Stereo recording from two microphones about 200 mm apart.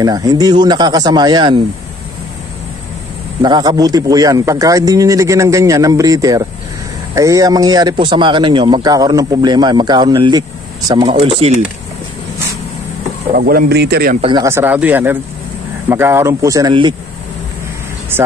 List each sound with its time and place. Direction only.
0.0 s speech: 20° right (ahead or behind)
3.4 s speech: 20° right (ahead or behind)
13.3 s speech: 45° right (ahead or behind)
14.2 s speech: 20° right (ahead or behind)
18.1 s speech: 10° right (ahead or behind)